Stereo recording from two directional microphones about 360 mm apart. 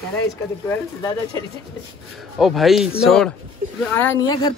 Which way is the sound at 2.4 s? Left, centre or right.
Centre.